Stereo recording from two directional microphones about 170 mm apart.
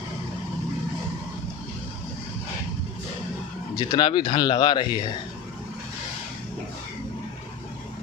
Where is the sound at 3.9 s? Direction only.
25° left (ahead or behind).